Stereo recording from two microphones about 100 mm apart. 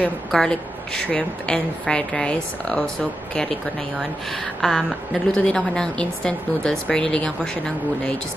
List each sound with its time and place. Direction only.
0.3 s a woman's voice: 5° left (ahead or behind)
4.6 s a woman's voice: centre (ahead or behind)